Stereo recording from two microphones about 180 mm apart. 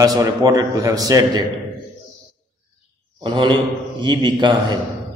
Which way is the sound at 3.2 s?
25° right (ahead or behind).